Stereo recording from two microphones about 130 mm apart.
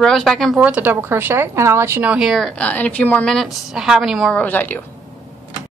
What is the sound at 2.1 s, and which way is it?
A woman's voice, centre (ahead or behind).